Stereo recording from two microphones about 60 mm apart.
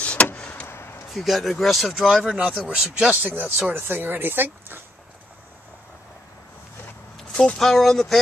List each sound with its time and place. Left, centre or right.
0.0 s vehicle: left
0.7 s a sound: left
1.1 s speech: centre
3.1 s speech: right
7.4 s speech: centre